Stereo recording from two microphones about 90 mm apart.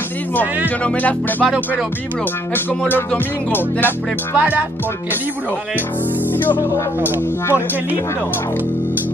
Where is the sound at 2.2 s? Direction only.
20° left (ahead or behind).